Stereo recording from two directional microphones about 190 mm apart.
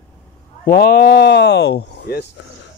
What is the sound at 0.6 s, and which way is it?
Speech, 55° left (ahead or behind).